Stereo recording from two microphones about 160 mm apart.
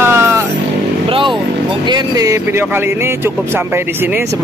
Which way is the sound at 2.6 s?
15° right (ahead or behind).